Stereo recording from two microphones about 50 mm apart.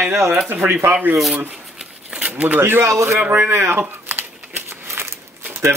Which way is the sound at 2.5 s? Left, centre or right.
Right.